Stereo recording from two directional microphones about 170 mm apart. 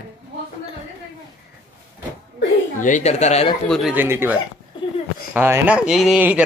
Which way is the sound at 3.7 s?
Centre (ahead or behind).